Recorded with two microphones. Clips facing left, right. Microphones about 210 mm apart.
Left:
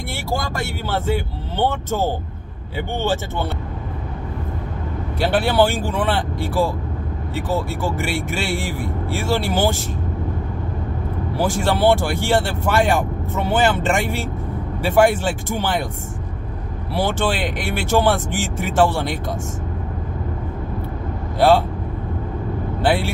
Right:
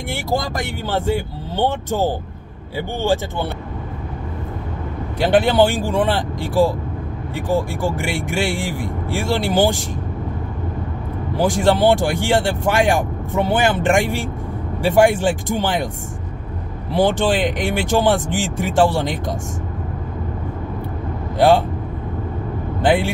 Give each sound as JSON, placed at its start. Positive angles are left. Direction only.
{"t": 0.1, "sound": "speech", "side_deg": -15}
{"t": 5.2, "sound": "speech", "side_deg": -15}
{"t": 11.3, "sound": "speech", "side_deg": -15}
{"t": 16.9, "sound": "speech", "side_deg": -15}
{"t": 21.4, "sound": "speech", "side_deg": -15}
{"t": 22.8, "sound": "speech", "side_deg": -15}